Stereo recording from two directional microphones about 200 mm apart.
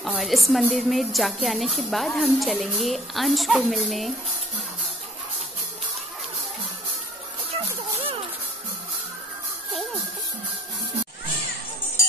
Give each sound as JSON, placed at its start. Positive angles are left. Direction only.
{"t": 0.0, "sound": "speech", "side_deg": 0}
{"t": 8.0, "sound": "music", "side_deg": -30}